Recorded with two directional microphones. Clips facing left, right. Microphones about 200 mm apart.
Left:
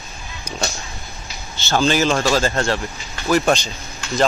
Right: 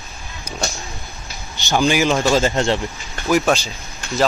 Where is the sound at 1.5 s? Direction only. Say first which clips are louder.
Right 1 dB; 15° right (ahead or behind).